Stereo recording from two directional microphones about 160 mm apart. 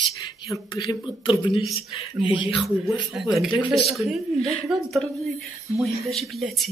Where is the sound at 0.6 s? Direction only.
30° left (ahead or behind).